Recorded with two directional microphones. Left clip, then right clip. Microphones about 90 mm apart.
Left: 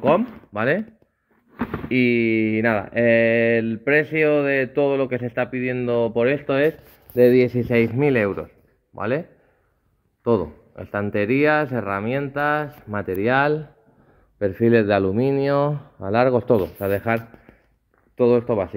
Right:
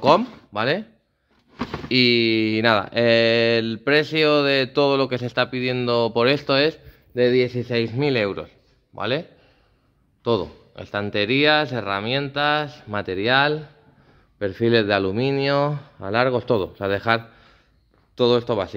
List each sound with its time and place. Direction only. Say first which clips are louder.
0.5 s speech: left 1 dB; 30° right (ahead or behind)
2.0 s speech: right 2 dB; 50° right (ahead or behind)
6.4 s speech: even; 30° right (ahead or behind)
7.2 s speech: left 3 dB; 35° left (ahead or behind)
7.9 s speech: left 2 dB; 10° right (ahead or behind)
10.2 s speech: left 2 dB; centre (ahead or behind)
10.8 s speech: even; 10° right (ahead or behind)
12.6 s speech: right 1 dB; 20° right (ahead or behind)
13.0 s speech: left 2 dB; 5° right (ahead or behind)
13.3 s speech: right 1 dB; 10° left (ahead or behind)
16.8 s speech: right 1 dB; 15° right (ahead or behind)
18.1 s speech: left 1 dB; 35° right (ahead or behind)